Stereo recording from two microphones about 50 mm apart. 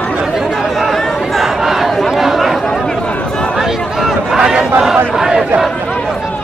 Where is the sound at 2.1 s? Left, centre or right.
Centre.